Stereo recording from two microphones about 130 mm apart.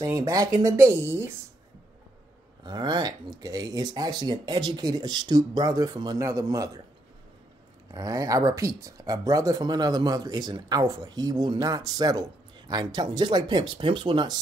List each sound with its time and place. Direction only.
0.0 s speech: 25° right (ahead or behind)
2.6 s speech: 35° right (ahead or behind)
7.9 s speech: 25° right (ahead or behind)